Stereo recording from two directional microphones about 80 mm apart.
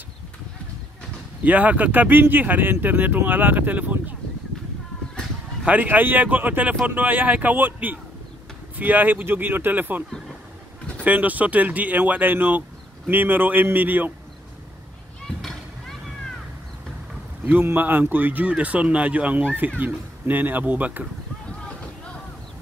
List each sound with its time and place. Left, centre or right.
1.4 s speech: centre
5.7 s speech: right
11.1 s speech: centre
17.5 s speech: right